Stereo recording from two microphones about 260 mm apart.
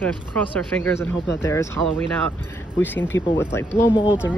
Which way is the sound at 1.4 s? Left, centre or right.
Centre.